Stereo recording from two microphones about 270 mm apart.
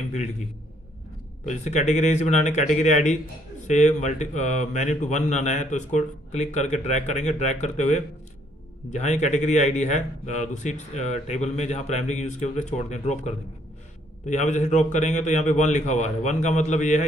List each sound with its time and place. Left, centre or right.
0.1 s speech: left
1.5 s speech: left